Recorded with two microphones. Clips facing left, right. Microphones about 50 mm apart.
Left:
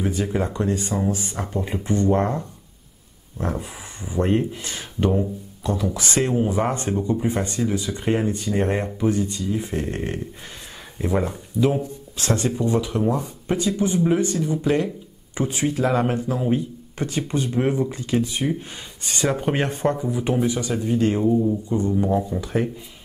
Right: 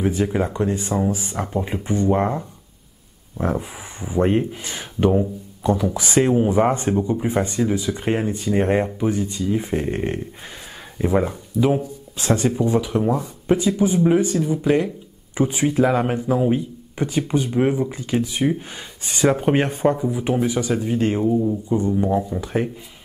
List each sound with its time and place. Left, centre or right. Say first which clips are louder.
0.0 s speech: right 3 dB; centre
21.2 s speech: even; centre